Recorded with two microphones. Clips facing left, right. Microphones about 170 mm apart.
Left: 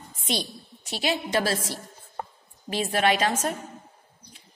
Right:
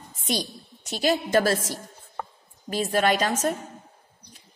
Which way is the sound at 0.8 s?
45° right (ahead or behind).